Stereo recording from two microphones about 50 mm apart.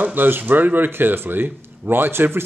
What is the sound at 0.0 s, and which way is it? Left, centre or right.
Speech, right.